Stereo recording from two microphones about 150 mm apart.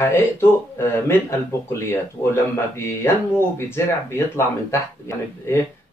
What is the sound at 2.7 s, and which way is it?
Speech, 15° left (ahead or behind).